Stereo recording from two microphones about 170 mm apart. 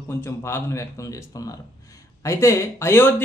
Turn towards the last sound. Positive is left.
turn(degrees=10)  # may be behind; listen again after turning